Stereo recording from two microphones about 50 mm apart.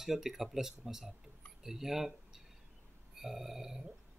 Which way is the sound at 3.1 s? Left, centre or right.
Centre.